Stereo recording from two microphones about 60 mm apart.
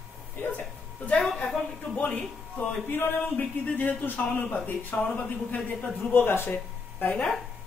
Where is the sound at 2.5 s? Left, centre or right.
Left.